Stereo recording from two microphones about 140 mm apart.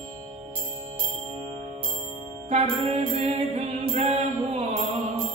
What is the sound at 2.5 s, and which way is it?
Mantra, 45° right (ahead or behind).